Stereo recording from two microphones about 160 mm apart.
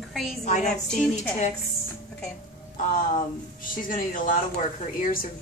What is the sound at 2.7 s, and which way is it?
Speech, 50° left (ahead or behind).